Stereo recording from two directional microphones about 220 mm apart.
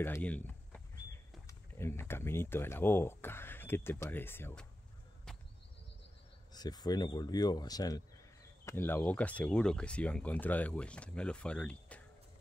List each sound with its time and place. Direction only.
0.0 s speech: 10° left (ahead or behind)
6.5 s speech: 20° left (ahead or behind)